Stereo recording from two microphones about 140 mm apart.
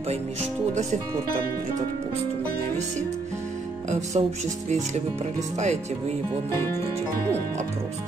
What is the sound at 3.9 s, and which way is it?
Speech, 55° right (ahead or behind).